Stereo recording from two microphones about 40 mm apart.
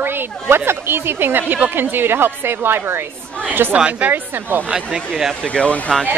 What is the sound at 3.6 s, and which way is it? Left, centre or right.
Speech, right.